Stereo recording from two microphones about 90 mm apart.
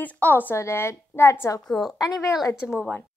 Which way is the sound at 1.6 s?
5° left (ahead or behind).